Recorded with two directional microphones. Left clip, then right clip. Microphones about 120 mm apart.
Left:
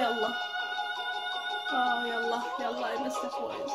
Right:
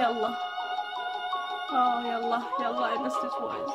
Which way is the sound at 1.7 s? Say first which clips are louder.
Right 3 dB; 30° right (ahead or behind).